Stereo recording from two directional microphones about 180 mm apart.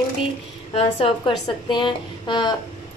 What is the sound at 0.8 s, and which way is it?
A woman's voice, 30° left (ahead or behind).